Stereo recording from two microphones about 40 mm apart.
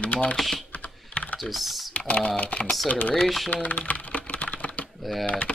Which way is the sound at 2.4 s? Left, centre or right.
Left.